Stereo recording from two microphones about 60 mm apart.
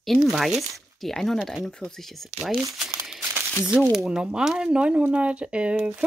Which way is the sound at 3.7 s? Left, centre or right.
Centre.